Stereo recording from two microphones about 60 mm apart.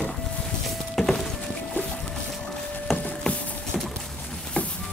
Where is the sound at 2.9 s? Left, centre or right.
Left.